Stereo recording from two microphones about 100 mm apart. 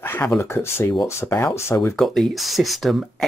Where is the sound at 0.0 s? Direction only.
20° left (ahead or behind).